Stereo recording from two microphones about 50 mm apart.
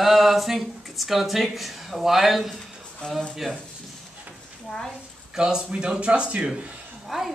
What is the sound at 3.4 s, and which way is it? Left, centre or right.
Speech, centre.